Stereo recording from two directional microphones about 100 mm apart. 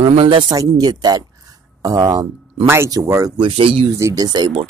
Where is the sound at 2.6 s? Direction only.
25° right (ahead or behind).